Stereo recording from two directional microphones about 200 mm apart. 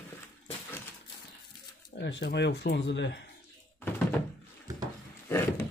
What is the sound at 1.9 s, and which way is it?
Speech, 60° left (ahead or behind).